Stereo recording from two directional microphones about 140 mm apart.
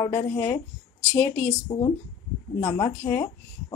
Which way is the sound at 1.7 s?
30° left (ahead or behind).